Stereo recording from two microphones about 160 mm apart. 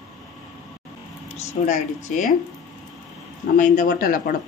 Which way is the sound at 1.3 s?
45° left (ahead or behind).